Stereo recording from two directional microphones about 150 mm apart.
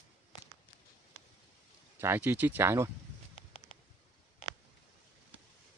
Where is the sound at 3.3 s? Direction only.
35° left (ahead or behind).